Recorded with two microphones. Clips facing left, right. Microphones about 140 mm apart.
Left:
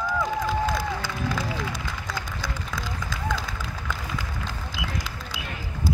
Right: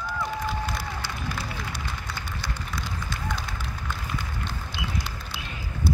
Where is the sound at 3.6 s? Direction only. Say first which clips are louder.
Left 2 dB; 90° left.